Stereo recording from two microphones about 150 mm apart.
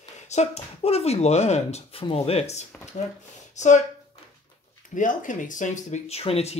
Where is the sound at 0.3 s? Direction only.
45° left (ahead or behind).